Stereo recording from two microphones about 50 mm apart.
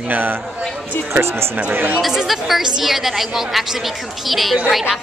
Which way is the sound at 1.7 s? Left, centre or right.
Right.